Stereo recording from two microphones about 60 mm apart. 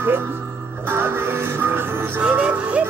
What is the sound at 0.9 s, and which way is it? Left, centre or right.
Music, right.